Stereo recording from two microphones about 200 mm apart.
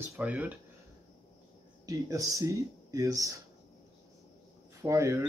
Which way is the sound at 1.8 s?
15° right (ahead or behind).